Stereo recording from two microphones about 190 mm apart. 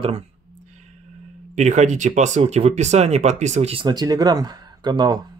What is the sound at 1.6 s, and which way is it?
Speech, 40° right (ahead or behind).